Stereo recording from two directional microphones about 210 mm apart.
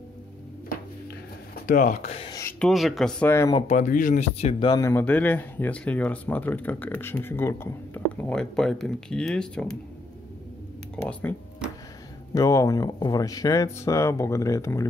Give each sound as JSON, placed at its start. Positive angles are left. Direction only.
{"t": 1.5, "sound": "speech", "side_deg": 40}
{"t": 2.6, "sound": "speech", "side_deg": 0}
{"t": 3.5, "sound": "speech", "side_deg": 35}
{"t": 11.1, "sound": "speech", "side_deg": 5}
{"t": 12.4, "sound": "speech", "side_deg": 15}